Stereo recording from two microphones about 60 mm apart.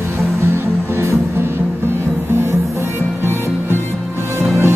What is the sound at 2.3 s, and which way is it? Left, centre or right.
Music, right.